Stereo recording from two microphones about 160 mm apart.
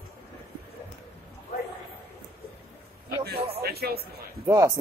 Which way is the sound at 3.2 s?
75° right (ahead or behind).